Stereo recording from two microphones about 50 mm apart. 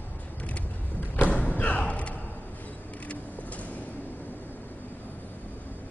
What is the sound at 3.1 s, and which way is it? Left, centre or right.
Vehicle, left.